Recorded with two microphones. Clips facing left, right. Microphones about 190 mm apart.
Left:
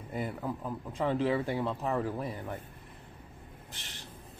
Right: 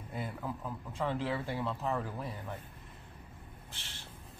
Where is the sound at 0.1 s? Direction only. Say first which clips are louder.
Left 4 dB; 15° left (ahead or behind).